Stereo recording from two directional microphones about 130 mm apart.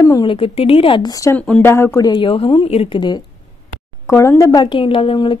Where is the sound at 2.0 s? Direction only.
40° left (ahead or behind).